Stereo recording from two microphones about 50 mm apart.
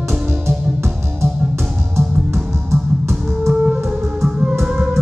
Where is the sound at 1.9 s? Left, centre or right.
Right.